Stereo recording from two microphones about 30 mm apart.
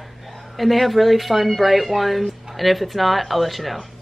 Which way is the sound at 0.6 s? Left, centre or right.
Centre.